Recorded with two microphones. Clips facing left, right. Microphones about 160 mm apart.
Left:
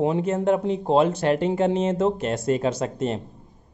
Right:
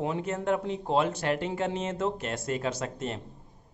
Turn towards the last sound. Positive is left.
turn(degrees=25)  # may be behind; listen again after turning